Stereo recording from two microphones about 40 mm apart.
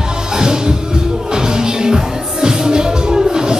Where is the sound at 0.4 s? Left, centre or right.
Centre.